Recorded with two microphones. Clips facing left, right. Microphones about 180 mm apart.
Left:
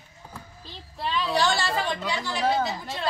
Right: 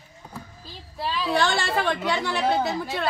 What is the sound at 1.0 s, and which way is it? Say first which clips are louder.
Speech: right 1 dB; centre (ahead or behind).